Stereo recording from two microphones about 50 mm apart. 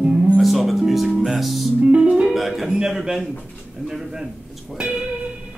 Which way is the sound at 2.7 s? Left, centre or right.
Centre.